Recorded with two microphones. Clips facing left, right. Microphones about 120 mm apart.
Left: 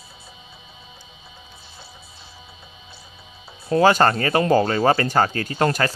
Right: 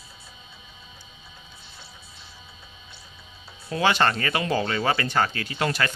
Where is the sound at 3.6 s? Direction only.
40° left (ahead or behind).